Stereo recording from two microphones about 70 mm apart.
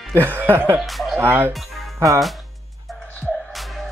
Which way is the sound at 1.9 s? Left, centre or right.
Right.